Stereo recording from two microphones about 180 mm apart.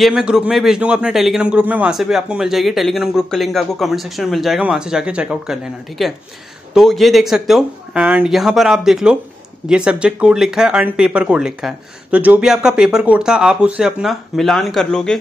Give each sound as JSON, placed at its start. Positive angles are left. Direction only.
{"t": 0.0, "sound": "a man's voice", "side_deg": -5}